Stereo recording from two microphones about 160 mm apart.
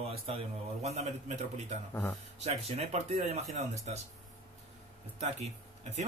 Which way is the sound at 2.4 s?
40° right (ahead or behind).